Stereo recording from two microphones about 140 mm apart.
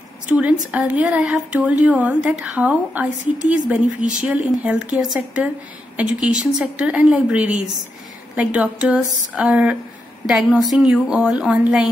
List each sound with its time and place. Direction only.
0.7 s a woman's voice: 10° right (ahead or behind)